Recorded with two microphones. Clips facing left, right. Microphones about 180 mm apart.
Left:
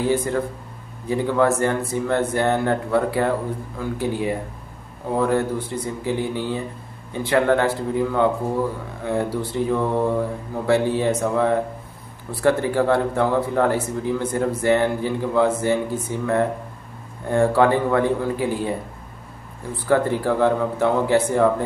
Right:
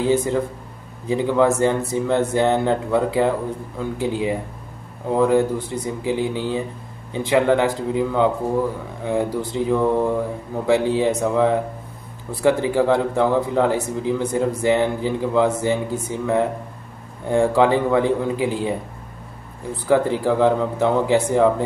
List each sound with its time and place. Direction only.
0.0 s a man's voice: 15° right (ahead or behind)